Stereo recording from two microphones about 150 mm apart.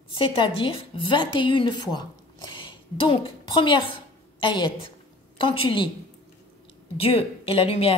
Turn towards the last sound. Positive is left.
turn(degrees=40)  # may be behind; listen again after turning